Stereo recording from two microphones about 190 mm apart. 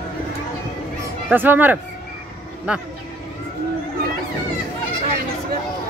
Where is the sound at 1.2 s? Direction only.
10° right (ahead or behind).